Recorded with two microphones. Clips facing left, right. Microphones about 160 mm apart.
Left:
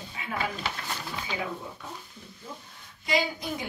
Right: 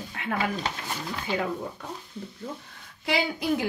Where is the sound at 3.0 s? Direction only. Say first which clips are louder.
Right 2 dB; 70° right (ahead or behind).